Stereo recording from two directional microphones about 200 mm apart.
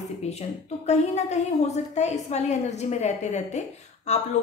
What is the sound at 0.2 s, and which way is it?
A woman's voice, 30° left (ahead or behind).